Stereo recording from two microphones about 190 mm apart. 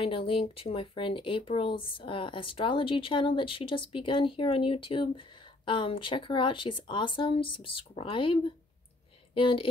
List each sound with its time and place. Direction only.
0.0 s a woman's voice: 30° left (ahead or behind)